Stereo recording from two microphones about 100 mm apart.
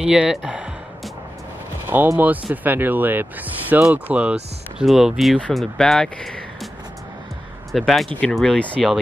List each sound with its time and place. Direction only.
0.0 s speech: 5° right (ahead or behind)
1.9 s speech: 20° right (ahead or behind); by 6.7 s 5° left (ahead or behind)
7.7 s speech: centre (ahead or behind)